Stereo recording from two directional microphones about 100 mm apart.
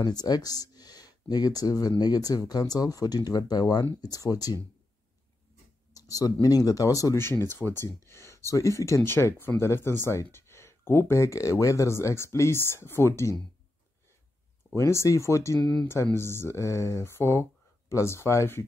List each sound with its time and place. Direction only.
0.0 s speech: 40° left (ahead or behind)
5.9 s a sound: 35° left (ahead or behind)
6.4 s speech: 35° left (ahead or behind)
14.7 s speech: 30° left (ahead or behind)